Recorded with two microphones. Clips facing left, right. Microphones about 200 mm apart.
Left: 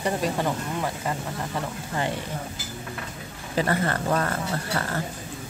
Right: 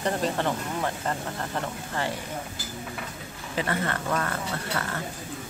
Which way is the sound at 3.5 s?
40° left (ahead or behind).